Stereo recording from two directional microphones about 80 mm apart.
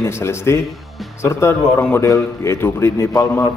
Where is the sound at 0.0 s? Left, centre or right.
Left.